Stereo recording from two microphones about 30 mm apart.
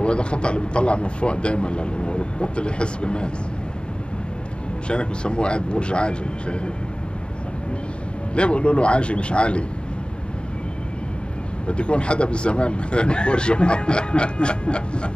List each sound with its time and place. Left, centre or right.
0.0 s speech: left
4.8 s speech: left
8.4 s speech: left
11.6 s speech: left